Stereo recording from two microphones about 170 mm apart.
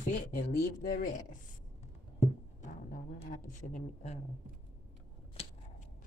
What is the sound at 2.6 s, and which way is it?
Speech, 50° left (ahead or behind).